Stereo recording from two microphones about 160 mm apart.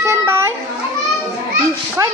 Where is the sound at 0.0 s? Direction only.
15° right (ahead or behind).